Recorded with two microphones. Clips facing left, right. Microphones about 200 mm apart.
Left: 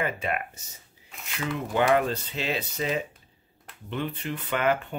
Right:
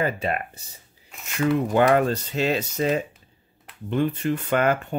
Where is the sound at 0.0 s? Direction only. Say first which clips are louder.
Right 4 dB; 35° right (ahead or behind).